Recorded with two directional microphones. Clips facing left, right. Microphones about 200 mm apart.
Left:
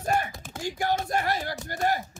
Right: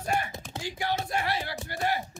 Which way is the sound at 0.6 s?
45° left (ahead or behind).